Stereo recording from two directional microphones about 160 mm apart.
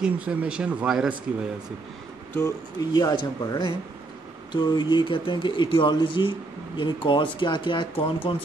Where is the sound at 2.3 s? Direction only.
20° left (ahead or behind).